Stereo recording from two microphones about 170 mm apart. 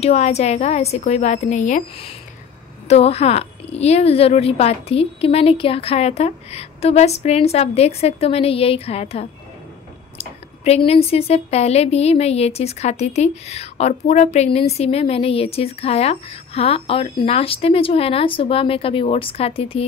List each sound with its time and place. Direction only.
0.0 s speech: 40° left (ahead or behind)